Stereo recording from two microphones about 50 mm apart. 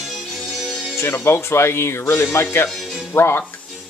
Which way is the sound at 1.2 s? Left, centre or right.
Left.